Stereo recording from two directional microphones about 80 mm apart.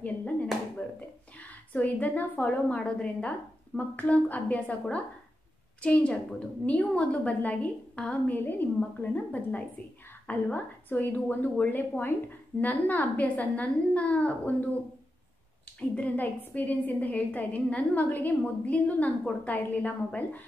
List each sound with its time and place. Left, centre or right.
1.4 s a woman's voice: centre
5.8 s a woman's voice: centre
16.0 s a woman's voice: left